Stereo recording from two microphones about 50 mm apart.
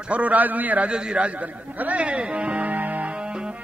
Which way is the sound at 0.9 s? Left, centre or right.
Centre.